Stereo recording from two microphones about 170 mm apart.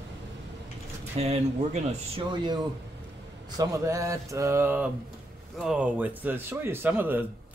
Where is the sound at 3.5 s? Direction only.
20° right (ahead or behind).